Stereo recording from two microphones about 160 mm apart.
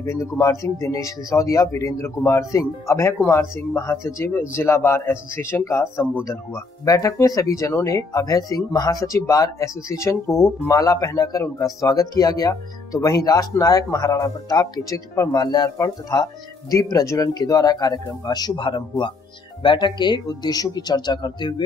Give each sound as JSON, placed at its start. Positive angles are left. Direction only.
{"t": 0.0, "sound": "a man's voice", "side_deg": 20}